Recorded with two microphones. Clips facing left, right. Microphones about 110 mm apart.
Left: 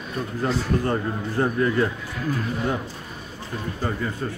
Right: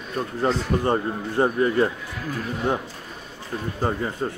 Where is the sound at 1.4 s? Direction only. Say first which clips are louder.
Right 2 dB; 25° right (ahead or behind).